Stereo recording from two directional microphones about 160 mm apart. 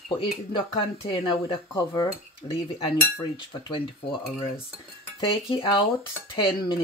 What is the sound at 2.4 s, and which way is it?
Cutlery, 40° left (ahead or behind).